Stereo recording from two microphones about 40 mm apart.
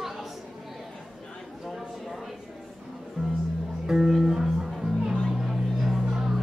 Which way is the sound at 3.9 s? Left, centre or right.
Centre.